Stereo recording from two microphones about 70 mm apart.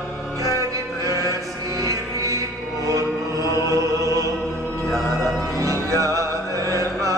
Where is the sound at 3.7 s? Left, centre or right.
Right.